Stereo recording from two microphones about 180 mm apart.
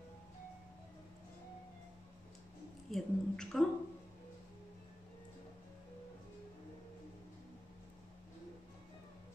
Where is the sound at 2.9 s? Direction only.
Centre (ahead or behind).